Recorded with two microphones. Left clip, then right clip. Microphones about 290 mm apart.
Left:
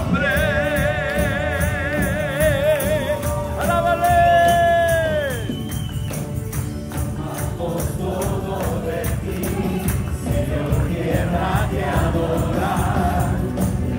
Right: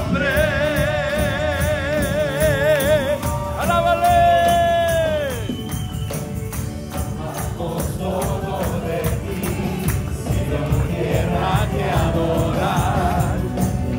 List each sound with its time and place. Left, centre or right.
0.1 s music: centre
2.6 s music: right
3.7 s music: centre